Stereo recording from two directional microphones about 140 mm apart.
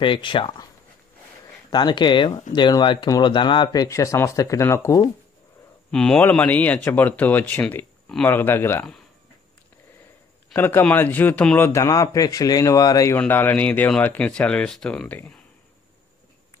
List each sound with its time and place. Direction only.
0.0 s speech: 35° left (ahead or behind)
1.7 s a man's voice: 30° left (ahead or behind)
5.9 s speech: 5° left (ahead or behind)
10.5 s a man's voice: 15° left (ahead or behind)
13.2 s speech: 15° left (ahead or behind)